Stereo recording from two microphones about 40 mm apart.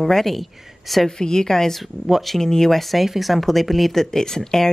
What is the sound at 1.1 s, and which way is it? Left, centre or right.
Speech, centre.